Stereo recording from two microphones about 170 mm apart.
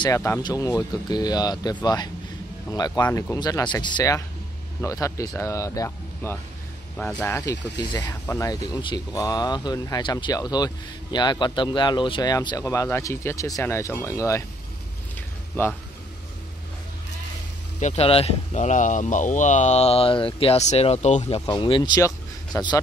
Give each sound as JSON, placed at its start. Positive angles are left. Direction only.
{"t": 0.0, "sound": "speech", "side_deg": 15}
{"t": 7.8, "sound": "speech", "side_deg": 25}
{"t": 15.1, "sound": "a sound", "side_deg": 10}
{"t": 17.7, "sound": "speech", "side_deg": 45}
{"t": 21.4, "sound": "speech", "side_deg": 30}